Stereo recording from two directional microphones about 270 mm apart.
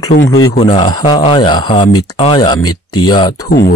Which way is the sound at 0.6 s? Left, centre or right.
Centre.